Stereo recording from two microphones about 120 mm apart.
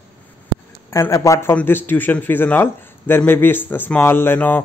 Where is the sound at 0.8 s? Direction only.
25° left (ahead or behind).